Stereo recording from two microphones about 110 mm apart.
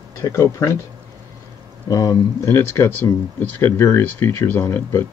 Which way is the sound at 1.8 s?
30° left (ahead or behind).